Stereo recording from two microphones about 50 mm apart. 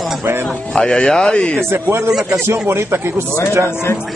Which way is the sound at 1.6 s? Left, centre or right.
Right.